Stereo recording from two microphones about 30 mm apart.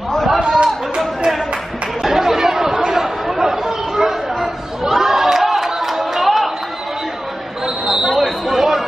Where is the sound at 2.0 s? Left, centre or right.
Centre.